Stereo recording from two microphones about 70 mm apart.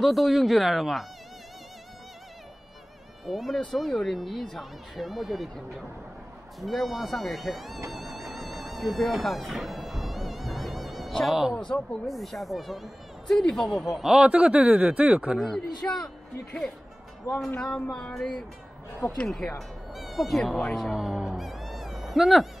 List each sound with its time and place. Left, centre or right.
0.0 s speech: centre
3.3 s speech: centre
7.9 s music: centre
11.5 s speech: centre
12.1 s speech: centre
15.3 s speech: centre
17.3 s speech: left
17.6 s speech: centre
20.9 s speech: centre